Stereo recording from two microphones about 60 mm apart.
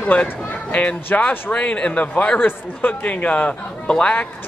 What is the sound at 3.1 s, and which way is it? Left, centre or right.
Speech, left.